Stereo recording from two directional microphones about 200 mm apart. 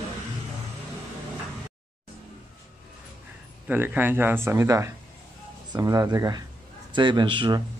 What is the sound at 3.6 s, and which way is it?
A man's voice, 10° right (ahead or behind).